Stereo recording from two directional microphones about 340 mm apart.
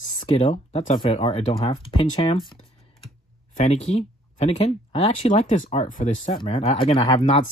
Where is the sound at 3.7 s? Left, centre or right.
Centre.